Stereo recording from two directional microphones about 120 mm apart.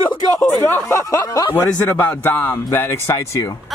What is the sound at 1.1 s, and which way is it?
Speech, 30° left (ahead or behind).